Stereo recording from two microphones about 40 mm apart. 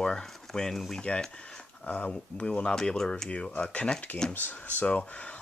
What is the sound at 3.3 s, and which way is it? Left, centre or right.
Speech, left.